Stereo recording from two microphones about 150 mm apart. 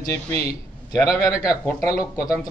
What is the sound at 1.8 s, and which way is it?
Speech, 20° left (ahead or behind).